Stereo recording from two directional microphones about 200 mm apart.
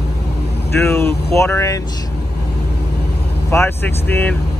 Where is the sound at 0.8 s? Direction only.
15° left (ahead or behind).